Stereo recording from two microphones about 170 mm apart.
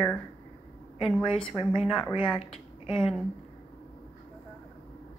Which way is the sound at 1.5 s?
30° left (ahead or behind).